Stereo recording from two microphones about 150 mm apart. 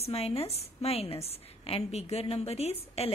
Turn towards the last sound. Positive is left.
turn(degrees=45)  # may be behind; listen again after turning